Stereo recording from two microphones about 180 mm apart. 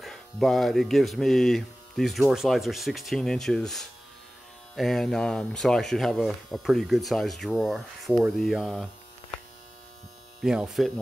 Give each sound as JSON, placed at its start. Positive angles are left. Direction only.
{"t": 0.0, "sound": "speech", "side_deg": 0}
{"t": 10.4, "sound": "speech", "side_deg": -5}